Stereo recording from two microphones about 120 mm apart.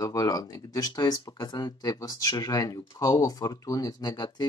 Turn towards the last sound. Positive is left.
turn(degrees=35)  # may be behind; listen again after turning